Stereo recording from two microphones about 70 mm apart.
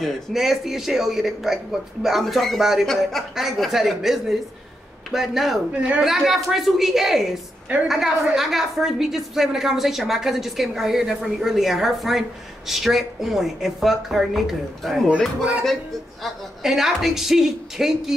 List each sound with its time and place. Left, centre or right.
0.0 s a woman's voice: centre
5.8 s a woman's voice: centre
6.0 s a woman's voice: centre
16.2 s a woman's voice: centre